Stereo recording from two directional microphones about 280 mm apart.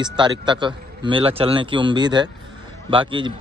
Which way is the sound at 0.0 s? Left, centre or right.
Centre.